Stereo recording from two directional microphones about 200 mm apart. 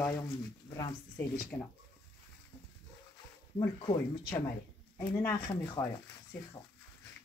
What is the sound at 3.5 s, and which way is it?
Speech, 20° left (ahead or behind).